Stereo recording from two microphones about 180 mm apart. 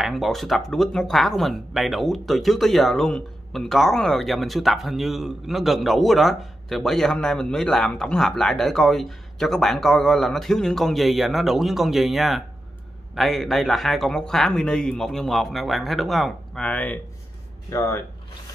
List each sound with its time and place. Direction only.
0.0 s speech: centre (ahead or behind); by 18.0 s 15° left (ahead or behind)